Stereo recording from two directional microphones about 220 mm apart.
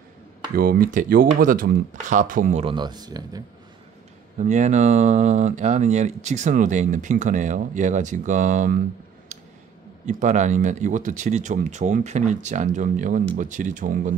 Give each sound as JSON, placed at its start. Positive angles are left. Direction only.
{"t": 0.6, "sound": "speech", "side_deg": -40}
{"t": 2.6, "sound": "speech", "side_deg": -20}
{"t": 4.4, "sound": "speech", "side_deg": -35}
{"t": 10.0, "sound": "speech", "side_deg": -35}